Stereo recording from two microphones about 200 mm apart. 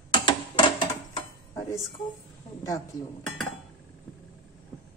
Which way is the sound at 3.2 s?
Centre (ahead or behind).